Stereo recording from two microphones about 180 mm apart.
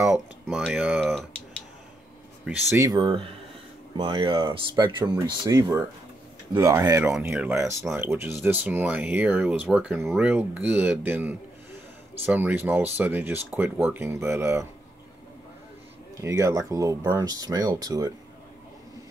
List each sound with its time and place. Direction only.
0.0 s a sound: centre (ahead or behind)
2.4 s speech: 10° right (ahead or behind)
16.2 s speech: 15° right (ahead or behind)